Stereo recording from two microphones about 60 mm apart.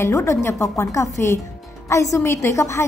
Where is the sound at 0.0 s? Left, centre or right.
Left.